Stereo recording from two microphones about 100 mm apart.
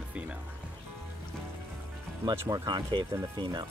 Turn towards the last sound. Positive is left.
turn(degrees=-50)  # may be behind; listen again after turning